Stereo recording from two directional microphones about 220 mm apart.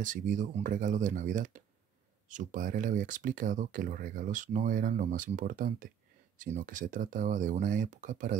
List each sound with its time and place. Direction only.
0.0 s speech: 35° right (ahead or behind)